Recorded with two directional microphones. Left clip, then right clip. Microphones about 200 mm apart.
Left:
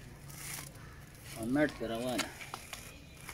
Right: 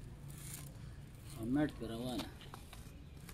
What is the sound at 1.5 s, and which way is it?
Speech, 35° left (ahead or behind).